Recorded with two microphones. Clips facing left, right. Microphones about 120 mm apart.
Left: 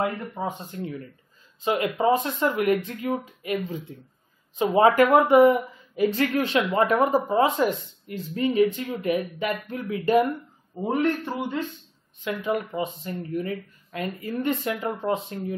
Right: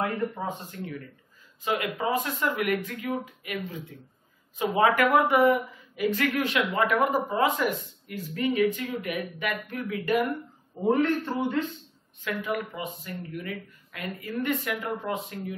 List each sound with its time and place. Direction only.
0.0 s speech: 25° left (ahead or behind)
10.9 s a man's voice: 15° left (ahead or behind); by 15.5 s 30° left (ahead or behind)